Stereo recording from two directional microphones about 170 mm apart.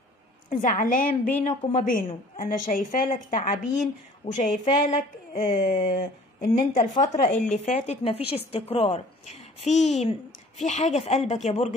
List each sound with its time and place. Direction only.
0.5 s a woman's voice: 50° left (ahead or behind)
4.2 s a woman's voice: 40° left (ahead or behind)
5.4 s a woman's voice: 55° left (ahead or behind)